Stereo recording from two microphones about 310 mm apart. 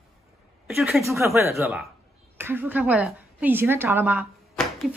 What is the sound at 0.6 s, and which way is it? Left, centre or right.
A woman's voice, centre.